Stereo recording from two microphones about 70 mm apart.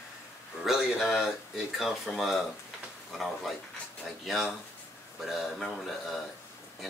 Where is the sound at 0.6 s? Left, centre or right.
Centre.